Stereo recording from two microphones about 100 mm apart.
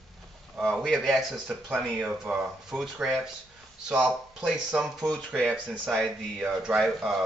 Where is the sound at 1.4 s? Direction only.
10° right (ahead or behind).